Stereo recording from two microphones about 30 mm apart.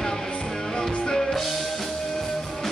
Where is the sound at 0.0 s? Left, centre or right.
Centre.